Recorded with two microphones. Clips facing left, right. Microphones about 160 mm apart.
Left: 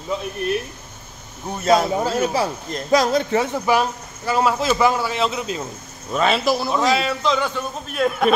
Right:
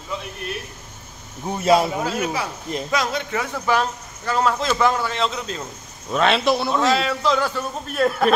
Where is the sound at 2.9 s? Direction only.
35° left (ahead or behind).